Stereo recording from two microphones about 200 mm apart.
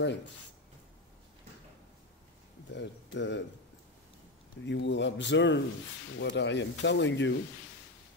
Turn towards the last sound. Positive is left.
turn(degrees=65)  # may be behind; listen again after turning